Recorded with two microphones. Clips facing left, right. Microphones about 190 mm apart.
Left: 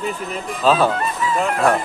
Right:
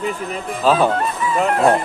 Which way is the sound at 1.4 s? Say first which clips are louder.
Right 3 dB; 35° right (ahead or behind).